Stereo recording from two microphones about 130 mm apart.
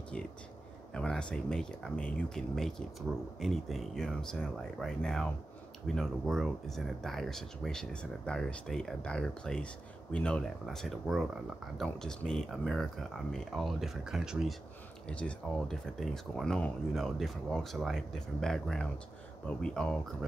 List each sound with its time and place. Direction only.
0.9 s speech: 5° left (ahead or behind)
15.0 s speech: 10° left (ahead or behind)